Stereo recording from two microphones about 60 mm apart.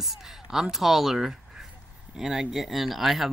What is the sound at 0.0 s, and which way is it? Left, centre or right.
Speech, centre.